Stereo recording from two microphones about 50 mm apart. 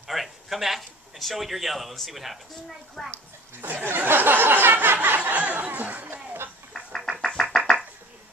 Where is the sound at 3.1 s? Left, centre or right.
Right.